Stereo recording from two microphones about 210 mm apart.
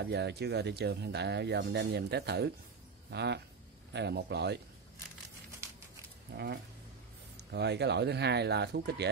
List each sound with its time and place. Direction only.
0.0 s speech: 50° right (ahead or behind)
5.6 s a sound: 15° right (ahead or behind)
6.3 s speech: 50° right (ahead or behind)